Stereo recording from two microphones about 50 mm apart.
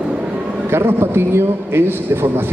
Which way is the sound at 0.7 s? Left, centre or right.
Right.